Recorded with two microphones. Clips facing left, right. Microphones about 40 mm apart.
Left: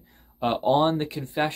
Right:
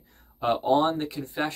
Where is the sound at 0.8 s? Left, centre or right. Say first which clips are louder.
Left 2 dB; left.